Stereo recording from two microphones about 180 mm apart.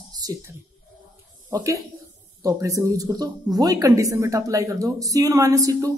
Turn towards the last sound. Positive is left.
turn(degrees=-20)  # may be behind; listen again after turning